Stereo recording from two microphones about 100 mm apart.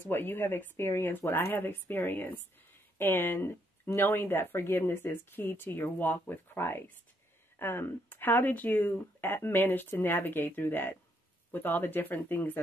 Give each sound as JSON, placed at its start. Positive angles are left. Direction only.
{"t": 0.1, "sound": "speech", "side_deg": 20}